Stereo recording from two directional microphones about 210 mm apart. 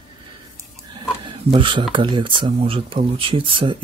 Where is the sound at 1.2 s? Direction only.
25° right (ahead or behind).